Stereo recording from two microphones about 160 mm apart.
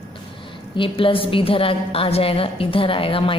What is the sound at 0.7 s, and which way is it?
A woman's voice, 35° left (ahead or behind).